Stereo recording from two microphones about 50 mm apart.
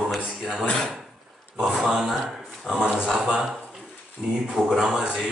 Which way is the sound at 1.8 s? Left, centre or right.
Centre.